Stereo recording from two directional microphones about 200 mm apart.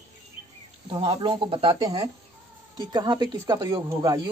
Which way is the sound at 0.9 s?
25° right (ahead or behind).